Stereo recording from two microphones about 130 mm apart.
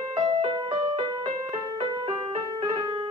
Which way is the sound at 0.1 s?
45° right (ahead or behind).